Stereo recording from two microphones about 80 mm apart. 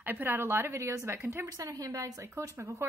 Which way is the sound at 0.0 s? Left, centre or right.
Right.